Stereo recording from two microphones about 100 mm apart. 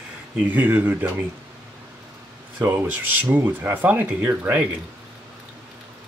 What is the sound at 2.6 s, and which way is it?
Speech, 25° right (ahead or behind).